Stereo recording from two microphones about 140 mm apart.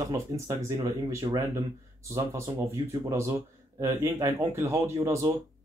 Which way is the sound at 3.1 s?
20° right (ahead or behind).